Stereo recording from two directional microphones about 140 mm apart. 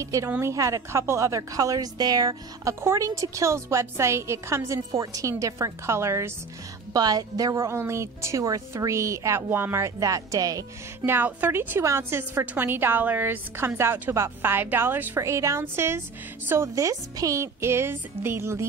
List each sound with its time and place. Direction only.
0.0 s a woman's voice: 20° right (ahead or behind)
11.1 s a woman's voice: 15° right (ahead or behind)